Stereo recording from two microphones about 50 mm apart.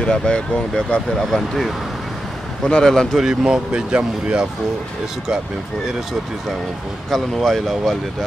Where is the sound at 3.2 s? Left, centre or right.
Centre.